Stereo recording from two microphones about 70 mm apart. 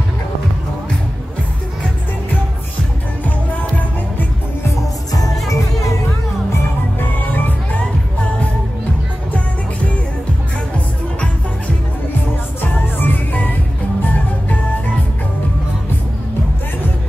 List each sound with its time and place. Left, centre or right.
3.3 s music: left
4.6 s music: left
7.0 s music: left
13.0 s music: left